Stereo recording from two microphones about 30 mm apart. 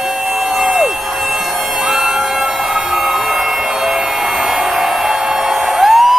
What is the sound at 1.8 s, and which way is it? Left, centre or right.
Siren, centre.